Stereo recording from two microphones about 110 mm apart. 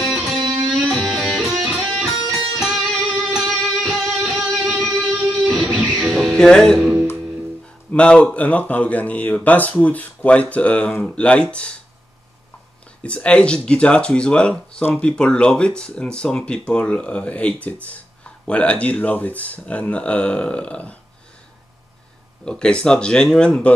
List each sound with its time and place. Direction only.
0.0 s music: centre (ahead or behind)
0.4 s music: 55° right (ahead or behind)
0.7 s music: centre (ahead or behind)
7.9 s speech: 10° left (ahead or behind)
13.0 s speech: 10° left (ahead or behind)
22.4 s speech: 10° left (ahead or behind)